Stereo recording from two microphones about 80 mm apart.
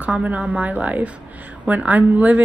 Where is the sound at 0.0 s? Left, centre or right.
Centre.